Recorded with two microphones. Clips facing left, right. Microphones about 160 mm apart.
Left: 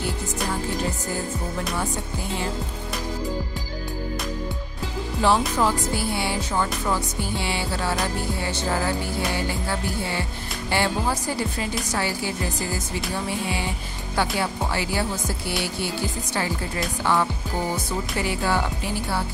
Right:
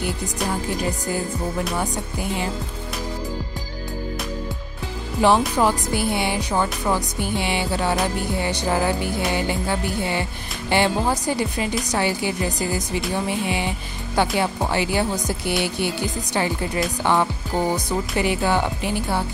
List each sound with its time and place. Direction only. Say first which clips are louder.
5.2 s music: right 3 dB; 15° right (ahead or behind)
8.4 s a woman's voice: right 6 dB; 15° right (ahead or behind)
13.3 s music: right 3 dB; 20° right (ahead or behind)